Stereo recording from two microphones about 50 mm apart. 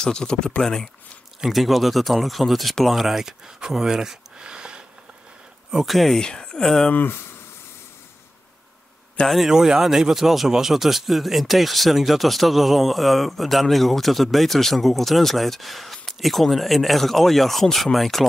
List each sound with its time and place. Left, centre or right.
0.0 s speech: centre
1.4 s speech: centre
5.7 s speech: centre
6.1 s speech: centre
6.9 s speech: left
9.3 s speech: centre